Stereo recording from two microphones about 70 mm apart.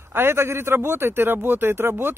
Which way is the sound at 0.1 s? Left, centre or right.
Right.